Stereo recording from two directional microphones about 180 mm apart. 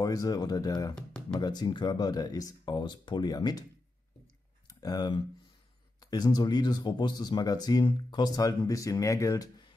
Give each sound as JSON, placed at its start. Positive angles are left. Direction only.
{"t": 0.0, "sound": "speech", "side_deg": 20}
{"t": 0.9, "sound": "music", "side_deg": 5}
{"t": 1.4, "sound": "speech", "side_deg": 25}
{"t": 4.6, "sound": "speech", "side_deg": 20}